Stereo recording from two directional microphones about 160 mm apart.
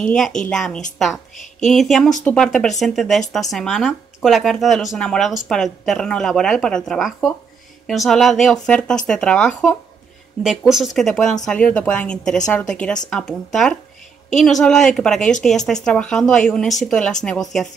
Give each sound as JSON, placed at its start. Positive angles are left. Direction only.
{"t": 0.0, "sound": "a woman's voice", "side_deg": 5}
{"t": 10.4, "sound": "a woman's voice", "side_deg": -5}